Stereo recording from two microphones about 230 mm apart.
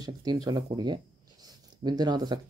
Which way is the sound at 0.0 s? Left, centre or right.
Centre.